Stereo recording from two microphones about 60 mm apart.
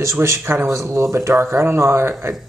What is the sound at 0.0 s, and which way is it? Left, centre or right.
Speech, right.